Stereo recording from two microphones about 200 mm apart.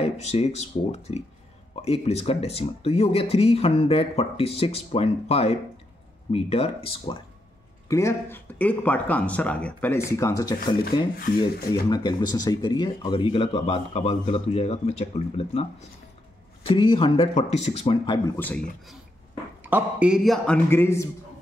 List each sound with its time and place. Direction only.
0.0 s speech: 30° left (ahead or behind)
7.9 s speech: 15° left (ahead or behind)
10.8 s speech: 45° left (ahead or behind)
11.7 s speech: 20° left (ahead or behind)
16.6 s speech: 25° left (ahead or behind)
19.6 s a man's voice: 5° right (ahead or behind); by 21.1 s 10° left (ahead or behind)